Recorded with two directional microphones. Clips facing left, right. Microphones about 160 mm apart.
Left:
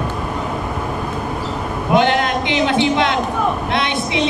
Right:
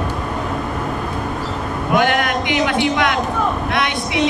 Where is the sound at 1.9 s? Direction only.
25° left (ahead or behind).